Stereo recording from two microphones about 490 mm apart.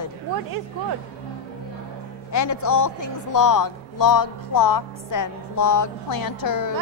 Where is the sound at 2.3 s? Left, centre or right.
Left.